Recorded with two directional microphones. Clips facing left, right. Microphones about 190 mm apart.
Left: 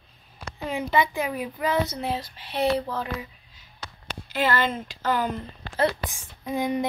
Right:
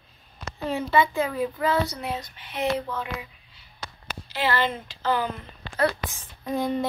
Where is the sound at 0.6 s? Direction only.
15° left (ahead or behind); by 3.3 s 35° left (ahead or behind).